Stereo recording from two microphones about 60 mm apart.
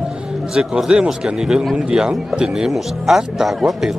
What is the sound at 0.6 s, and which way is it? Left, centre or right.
Speech, centre.